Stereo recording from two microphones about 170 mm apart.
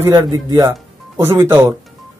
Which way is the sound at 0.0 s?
20° right (ahead or behind).